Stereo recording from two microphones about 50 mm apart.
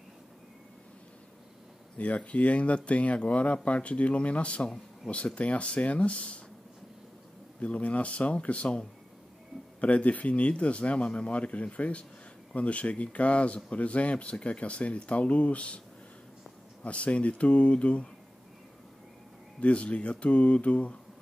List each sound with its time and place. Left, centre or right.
2.0 s speech: left
7.6 s speech: left
16.8 s speech: left
19.6 s speech: left